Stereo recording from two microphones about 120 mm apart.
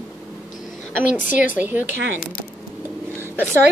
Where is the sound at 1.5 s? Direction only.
15° right (ahead or behind).